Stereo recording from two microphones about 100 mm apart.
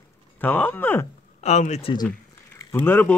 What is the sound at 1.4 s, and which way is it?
Speech, 80° left.